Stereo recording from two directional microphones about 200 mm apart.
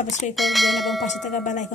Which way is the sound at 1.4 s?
40° left (ahead or behind).